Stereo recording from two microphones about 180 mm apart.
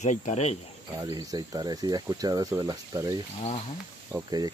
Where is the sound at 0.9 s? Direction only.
20° right (ahead or behind).